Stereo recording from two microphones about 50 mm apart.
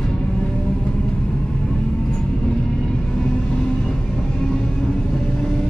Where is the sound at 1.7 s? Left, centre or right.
Centre.